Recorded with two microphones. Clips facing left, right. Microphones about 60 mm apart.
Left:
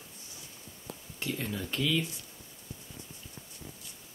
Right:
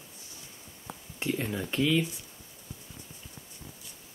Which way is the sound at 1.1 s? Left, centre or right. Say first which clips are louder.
Right 4 dB; right.